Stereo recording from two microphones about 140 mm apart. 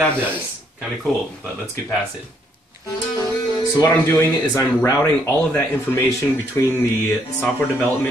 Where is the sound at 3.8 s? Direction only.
15° left (ahead or behind).